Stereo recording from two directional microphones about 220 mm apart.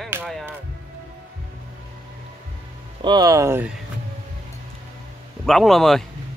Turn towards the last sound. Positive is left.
turn(degrees=0)  # may be behind; listen again after turning